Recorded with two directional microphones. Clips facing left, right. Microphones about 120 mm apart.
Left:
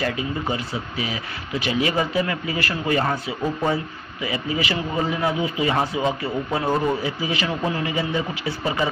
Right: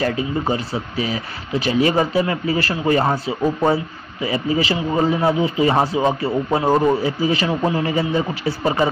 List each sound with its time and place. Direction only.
0.0 s speech: 35° right (ahead or behind)
8.5 s speech: 40° right (ahead or behind)